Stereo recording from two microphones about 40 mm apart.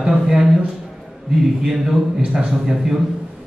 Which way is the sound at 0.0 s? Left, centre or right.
Centre.